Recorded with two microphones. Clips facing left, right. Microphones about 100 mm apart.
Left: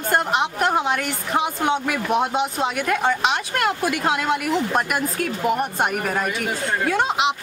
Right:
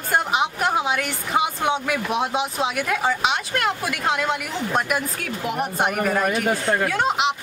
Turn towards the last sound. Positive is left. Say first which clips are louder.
# left 1 dB
turn(degrees=0)  # may be behind; listen again after turning